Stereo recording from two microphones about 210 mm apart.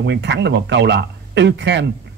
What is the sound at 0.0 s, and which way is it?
Speech, 55° right (ahead or behind).